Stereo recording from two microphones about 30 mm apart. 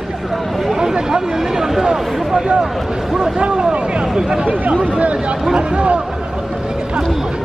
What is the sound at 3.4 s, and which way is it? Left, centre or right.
Speech, right.